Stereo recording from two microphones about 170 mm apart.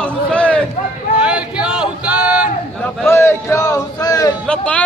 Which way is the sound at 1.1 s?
5° right (ahead or behind).